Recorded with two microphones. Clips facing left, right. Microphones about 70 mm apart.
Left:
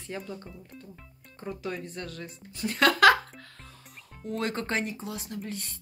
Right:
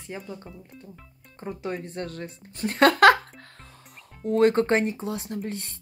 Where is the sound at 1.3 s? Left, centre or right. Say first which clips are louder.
Right 3 dB; right.